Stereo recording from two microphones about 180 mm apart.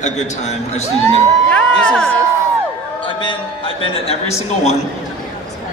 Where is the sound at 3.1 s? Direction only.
25° left (ahead or behind).